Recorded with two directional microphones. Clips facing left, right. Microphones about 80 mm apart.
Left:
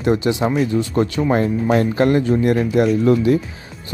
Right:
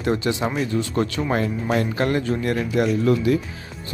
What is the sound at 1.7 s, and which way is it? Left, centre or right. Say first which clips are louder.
Speech: left 6 dB; left.